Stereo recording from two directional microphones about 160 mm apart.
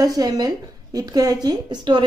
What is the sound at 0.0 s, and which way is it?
A woman's voice, 25° right (ahead or behind).